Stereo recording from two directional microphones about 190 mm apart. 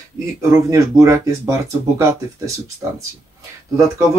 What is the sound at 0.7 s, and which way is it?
Speech, 15° right (ahead or behind).